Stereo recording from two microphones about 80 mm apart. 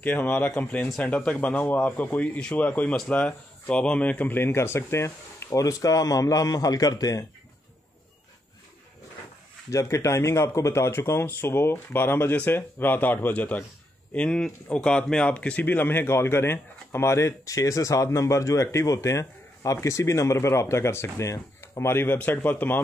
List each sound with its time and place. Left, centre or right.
0.0 s a man's voice: left
9.7 s speech: left